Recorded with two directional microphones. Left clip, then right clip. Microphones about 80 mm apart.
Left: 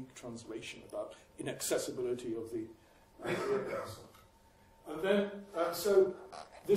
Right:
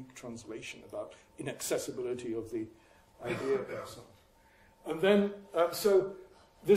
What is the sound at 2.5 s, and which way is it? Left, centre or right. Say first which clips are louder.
Speech: right 3 dB; right.